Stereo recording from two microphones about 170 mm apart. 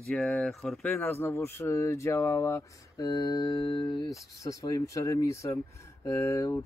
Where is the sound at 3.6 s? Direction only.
30° left (ahead or behind).